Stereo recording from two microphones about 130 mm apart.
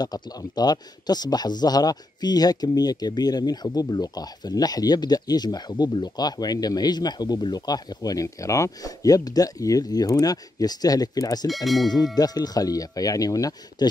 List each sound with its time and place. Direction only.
0.0 s speech: 30° left (ahead or behind)
11.4 s speech: centre (ahead or behind)
12.2 s speech: 30° left (ahead or behind)